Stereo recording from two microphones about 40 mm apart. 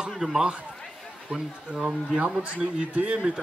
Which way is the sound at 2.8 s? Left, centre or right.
Right.